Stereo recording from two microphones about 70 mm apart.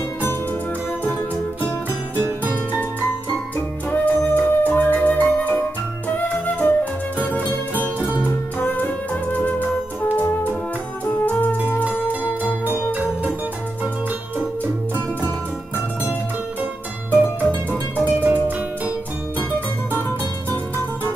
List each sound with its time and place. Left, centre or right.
2.1 s music: right
3.9 s music: left
12.6 s music: right
17.9 s music: right